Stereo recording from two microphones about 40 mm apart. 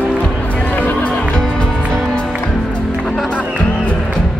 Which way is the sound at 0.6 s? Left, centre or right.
Left.